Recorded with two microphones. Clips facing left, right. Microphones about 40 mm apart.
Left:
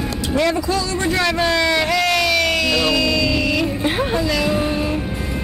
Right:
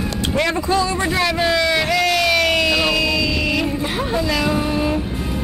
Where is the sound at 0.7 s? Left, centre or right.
Right.